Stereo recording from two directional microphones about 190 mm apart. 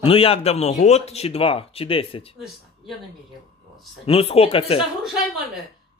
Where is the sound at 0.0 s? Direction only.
30° left (ahead or behind).